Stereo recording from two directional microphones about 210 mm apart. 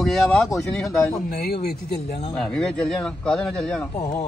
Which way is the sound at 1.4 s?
45° left (ahead or behind).